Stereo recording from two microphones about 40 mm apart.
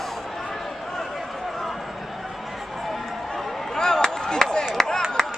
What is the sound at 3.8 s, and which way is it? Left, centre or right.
Chop, centre.